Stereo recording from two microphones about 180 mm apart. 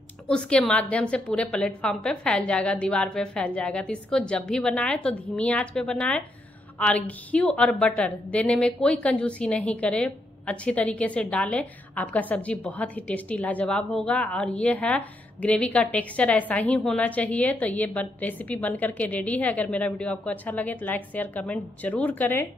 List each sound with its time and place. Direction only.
0.3 s a woman's voice: 5° left (ahead or behind)